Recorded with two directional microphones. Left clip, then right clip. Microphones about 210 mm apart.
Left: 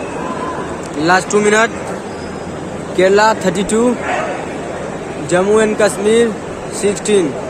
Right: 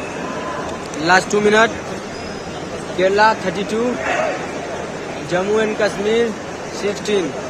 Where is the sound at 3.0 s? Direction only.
15° left (ahead or behind).